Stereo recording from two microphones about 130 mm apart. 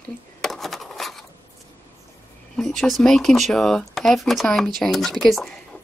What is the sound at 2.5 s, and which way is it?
Speech, centre (ahead or behind).